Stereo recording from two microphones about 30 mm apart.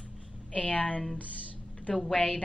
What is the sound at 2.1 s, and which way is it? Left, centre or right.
Speech, left.